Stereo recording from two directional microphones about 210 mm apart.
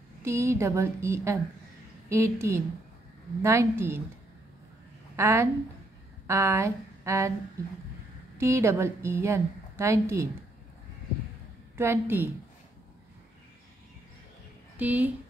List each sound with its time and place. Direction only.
0.2 s a woman's voice: 10° right (ahead or behind)
5.1 s a woman's voice: 15° right (ahead or behind)
8.4 s a woman's voice: 10° right (ahead or behind)
11.7 s a woman's voice: 10° right (ahead or behind)
14.8 s a woman's voice: 10° right (ahead or behind)